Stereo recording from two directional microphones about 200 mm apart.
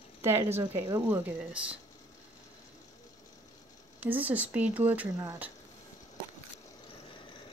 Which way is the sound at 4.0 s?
10° right (ahead or behind).